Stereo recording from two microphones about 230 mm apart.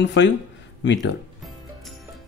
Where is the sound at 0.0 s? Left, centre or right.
Left.